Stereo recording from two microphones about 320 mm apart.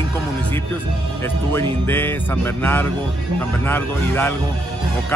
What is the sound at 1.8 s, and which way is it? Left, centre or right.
Music, centre.